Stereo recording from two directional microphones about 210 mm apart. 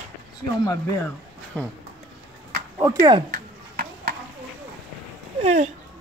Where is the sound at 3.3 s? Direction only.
45° right (ahead or behind).